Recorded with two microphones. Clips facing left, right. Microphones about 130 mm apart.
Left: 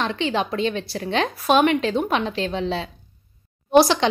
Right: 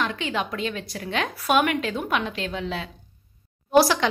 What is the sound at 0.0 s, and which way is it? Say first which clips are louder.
A woman's voice: left 4 dB; 30° left (ahead or behind).